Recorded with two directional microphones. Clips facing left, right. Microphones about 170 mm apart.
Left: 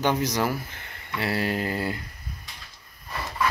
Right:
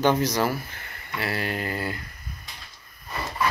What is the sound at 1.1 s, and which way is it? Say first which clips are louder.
Mantra: left 2 dB; 30° left (ahead or behind).